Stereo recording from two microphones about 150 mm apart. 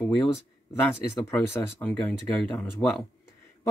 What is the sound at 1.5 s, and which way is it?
Speech, 10° left (ahead or behind).